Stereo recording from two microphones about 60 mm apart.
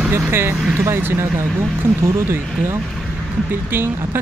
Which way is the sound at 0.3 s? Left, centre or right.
Right.